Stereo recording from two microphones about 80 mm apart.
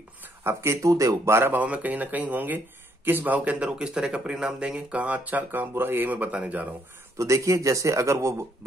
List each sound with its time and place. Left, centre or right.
0.4 s speech: right
1.5 s speech: centre
7.2 s speech: right